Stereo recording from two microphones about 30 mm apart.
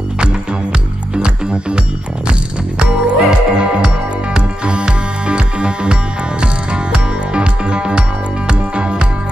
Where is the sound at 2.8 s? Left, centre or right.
Right.